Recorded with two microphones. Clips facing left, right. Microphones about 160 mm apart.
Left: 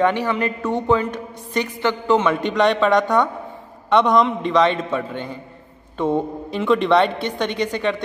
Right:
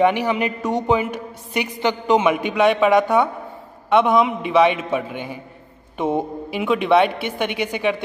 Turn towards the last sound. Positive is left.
turn(degrees=-10)  # may be behind; listen again after turning